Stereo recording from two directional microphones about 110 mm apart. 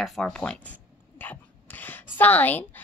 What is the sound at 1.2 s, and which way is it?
Dog, 15° left (ahead or behind).